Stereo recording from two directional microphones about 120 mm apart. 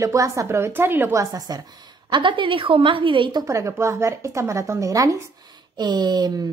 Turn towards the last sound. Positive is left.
turn(degrees=-35)  # may be behind; listen again after turning